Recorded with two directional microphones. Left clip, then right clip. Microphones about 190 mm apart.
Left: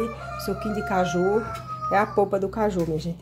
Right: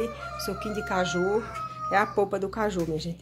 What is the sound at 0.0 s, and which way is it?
A woman's voice, centre (ahead or behind).